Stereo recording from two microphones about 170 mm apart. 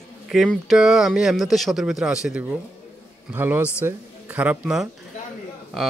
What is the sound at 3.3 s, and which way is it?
Speech, 15° right (ahead or behind).